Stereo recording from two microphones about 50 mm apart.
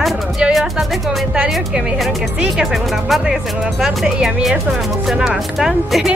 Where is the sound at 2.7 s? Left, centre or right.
Centre.